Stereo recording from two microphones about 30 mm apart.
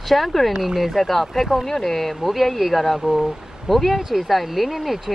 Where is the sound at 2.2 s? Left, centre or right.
Centre.